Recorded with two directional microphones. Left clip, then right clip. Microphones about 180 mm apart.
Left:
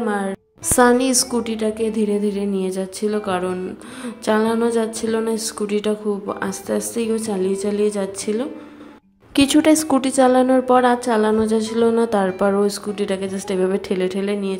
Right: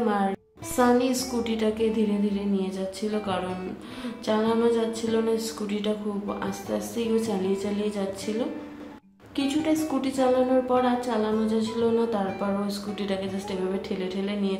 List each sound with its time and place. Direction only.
0.0 s a woman's voice: 25° left (ahead or behind)
0.7 s a woman's voice: 45° left (ahead or behind)
9.3 s a woman's voice: 50° left (ahead or behind)